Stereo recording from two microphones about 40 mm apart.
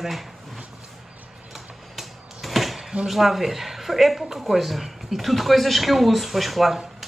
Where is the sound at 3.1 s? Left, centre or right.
Centre.